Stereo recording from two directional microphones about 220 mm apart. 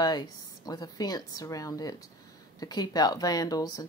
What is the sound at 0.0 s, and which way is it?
Speech, 15° left (ahead or behind).